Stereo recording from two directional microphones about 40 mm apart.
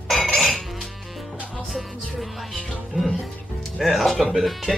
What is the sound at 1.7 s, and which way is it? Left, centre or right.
Speech, centre.